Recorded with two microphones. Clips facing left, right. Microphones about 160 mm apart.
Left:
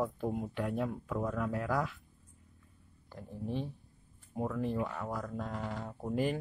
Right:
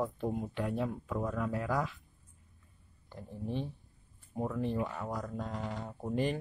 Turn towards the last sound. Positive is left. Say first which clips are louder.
# even
turn(degrees=5)  # may be behind; listen again after turning